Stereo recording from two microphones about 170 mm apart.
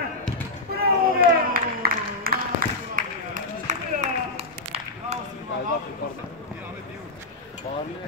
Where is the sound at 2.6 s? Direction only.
55° right (ahead or behind); by 5.2 s 40° right (ahead or behind).